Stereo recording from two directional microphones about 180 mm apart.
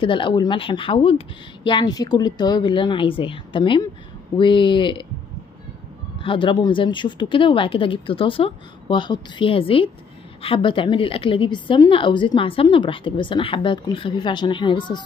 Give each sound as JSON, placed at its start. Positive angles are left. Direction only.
{"t": 0.0, "sound": "a woman's voice", "side_deg": 30}
{"t": 6.2, "sound": "a woman's voice", "side_deg": 25}